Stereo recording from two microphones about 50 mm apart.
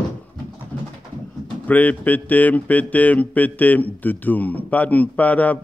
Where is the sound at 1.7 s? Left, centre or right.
Left.